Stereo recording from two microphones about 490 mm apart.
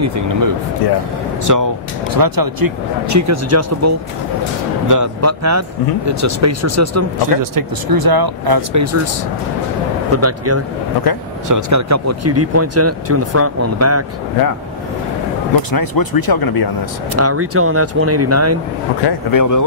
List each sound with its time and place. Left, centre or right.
0.0 s speech: right
7.5 s speech: right
10.1 s speech: right
15.7 s speech: left
17.1 s speech: right
19.0 s speech: left